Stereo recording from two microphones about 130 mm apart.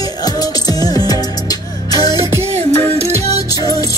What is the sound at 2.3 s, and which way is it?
Music, 55° right (ahead or behind).